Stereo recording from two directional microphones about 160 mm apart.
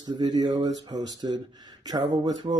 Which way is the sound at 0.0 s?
25° right (ahead or behind).